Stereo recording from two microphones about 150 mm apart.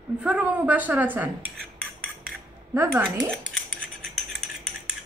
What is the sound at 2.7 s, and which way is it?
Speech, 20° right (ahead or behind).